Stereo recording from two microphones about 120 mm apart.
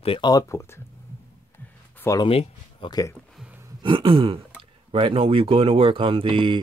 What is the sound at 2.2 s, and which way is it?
Speech, 50° left (ahead or behind).